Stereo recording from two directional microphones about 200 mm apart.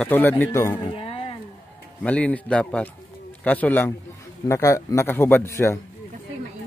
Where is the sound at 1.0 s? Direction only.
30° left (ahead or behind).